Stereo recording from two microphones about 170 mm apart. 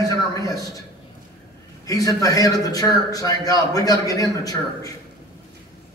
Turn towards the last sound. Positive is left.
turn(degrees=20)  # may be behind; listen again after turning